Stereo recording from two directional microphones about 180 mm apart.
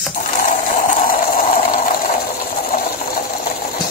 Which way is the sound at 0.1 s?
50° left (ahead or behind).